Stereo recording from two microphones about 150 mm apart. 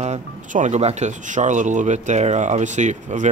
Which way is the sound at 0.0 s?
55° right (ahead or behind).